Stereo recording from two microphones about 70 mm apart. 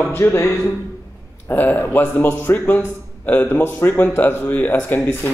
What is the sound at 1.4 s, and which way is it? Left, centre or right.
A man's voice, left.